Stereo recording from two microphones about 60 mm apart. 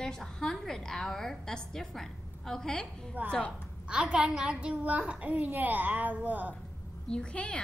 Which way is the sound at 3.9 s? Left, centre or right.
Centre.